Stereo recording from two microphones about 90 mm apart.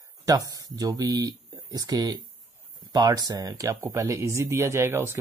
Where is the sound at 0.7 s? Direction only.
45° right (ahead or behind).